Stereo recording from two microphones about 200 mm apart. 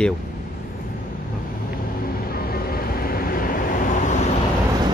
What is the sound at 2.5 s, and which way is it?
Vehicle, 50° left (ahead or behind).